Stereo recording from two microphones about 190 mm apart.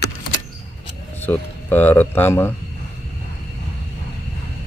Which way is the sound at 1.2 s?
10° left (ahead or behind).